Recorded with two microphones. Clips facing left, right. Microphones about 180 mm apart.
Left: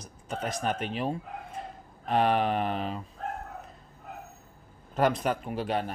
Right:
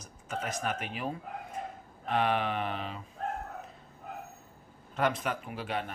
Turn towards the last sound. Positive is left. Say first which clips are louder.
# left 5 dB
turn(degrees=35)  # may be behind; listen again after turning